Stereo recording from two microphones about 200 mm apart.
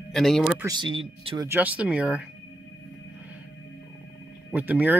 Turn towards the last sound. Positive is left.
turn(degrees=-10)  # may be behind; listen again after turning